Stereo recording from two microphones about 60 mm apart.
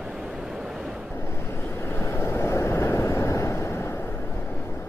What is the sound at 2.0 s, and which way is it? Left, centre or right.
Vehicle, left.